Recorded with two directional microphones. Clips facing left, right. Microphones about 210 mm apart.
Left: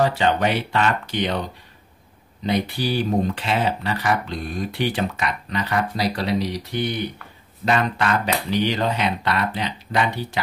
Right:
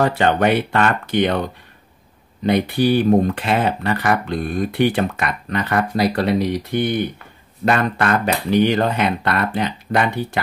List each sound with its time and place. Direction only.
0.0 s speech: 55° right (ahead or behind)
2.4 s speech: 55° right (ahead or behind)